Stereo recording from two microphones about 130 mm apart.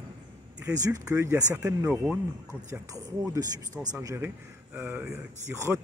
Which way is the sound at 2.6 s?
25° right (ahead or behind).